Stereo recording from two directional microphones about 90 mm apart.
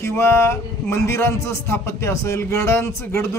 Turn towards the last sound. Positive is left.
turn(degrees=30)  # may be behind; listen again after turning